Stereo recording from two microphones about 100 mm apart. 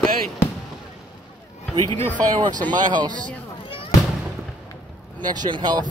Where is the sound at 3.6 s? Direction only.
60° left (ahead or behind).